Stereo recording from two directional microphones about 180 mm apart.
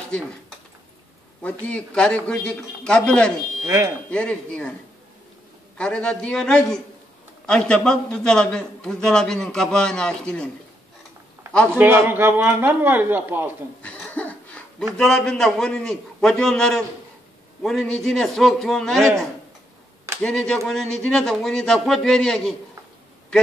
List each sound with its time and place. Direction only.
1.4 s a man's voice: 5° left (ahead or behind)
3.6 s a man's voice: 15° right (ahead or behind)
4.1 s a man's voice: 5° left (ahead or behind)
5.8 s a man's voice: 5° left (ahead or behind)
11.7 s a man's voice: 15° right (ahead or behind)
13.8 s a sound: 10° left (ahead or behind)
15.0 s a man's voice: 5° left (ahead or behind)